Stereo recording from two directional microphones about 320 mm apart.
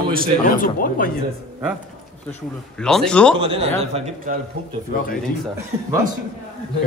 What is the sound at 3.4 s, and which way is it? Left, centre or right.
Speech, centre.